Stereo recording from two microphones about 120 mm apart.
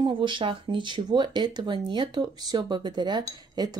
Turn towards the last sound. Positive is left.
turn(degrees=-35)  # may be behind; listen again after turning